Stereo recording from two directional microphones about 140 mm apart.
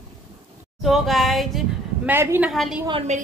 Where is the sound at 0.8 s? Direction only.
Centre (ahead or behind).